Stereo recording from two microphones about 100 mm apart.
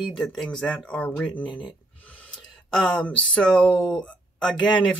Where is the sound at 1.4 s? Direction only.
55° left (ahead or behind).